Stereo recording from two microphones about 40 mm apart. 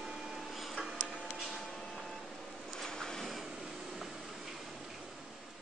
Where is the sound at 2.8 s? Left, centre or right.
Centre.